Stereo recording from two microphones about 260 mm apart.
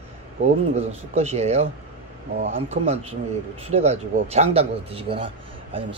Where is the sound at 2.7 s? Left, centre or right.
Right.